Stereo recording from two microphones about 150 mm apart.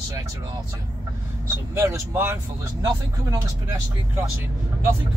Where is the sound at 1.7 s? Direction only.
15° right (ahead or behind).